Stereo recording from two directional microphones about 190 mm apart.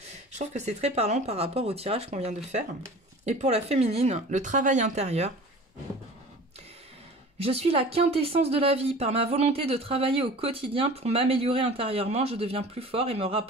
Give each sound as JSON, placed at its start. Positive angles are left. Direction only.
{"t": 0.4, "sound": "speech", "side_deg": -35}
{"t": 7.4, "sound": "speech", "side_deg": -30}